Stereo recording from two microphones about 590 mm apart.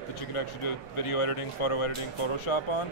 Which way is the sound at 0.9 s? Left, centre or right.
Left.